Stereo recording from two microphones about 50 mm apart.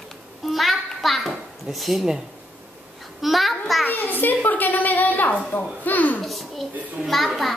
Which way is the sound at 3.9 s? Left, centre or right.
Left.